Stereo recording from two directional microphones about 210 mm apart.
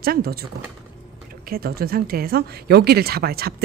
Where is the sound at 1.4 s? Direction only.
45° right (ahead or behind).